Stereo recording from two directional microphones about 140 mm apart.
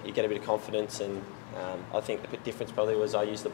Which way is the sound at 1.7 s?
25° left (ahead or behind).